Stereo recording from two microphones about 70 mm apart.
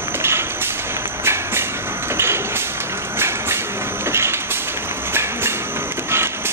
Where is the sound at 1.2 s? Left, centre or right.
Right.